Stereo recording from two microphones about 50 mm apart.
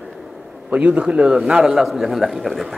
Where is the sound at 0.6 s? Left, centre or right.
Right.